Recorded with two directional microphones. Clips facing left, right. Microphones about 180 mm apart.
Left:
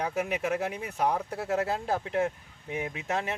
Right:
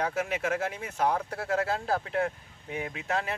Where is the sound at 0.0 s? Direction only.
15° left (ahead or behind).